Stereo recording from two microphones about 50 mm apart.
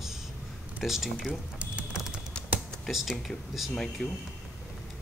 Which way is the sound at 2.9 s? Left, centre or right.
Centre.